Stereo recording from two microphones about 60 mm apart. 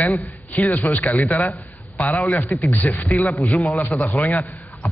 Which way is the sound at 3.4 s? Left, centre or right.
Centre.